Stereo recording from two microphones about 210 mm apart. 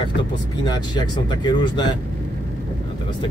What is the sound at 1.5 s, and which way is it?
Speech, 20° left (ahead or behind).